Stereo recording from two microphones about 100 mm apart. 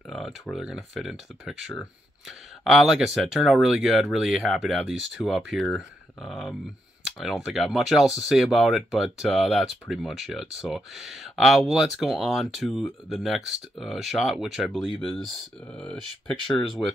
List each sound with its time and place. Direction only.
0.1 s speech: centre (ahead or behind)
16.3 s speech: 55° left (ahead or behind)